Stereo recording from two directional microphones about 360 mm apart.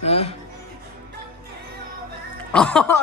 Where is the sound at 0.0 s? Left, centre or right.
Centre.